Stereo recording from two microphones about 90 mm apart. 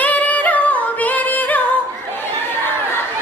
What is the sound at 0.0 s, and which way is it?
Singing, 15° left (ahead or behind).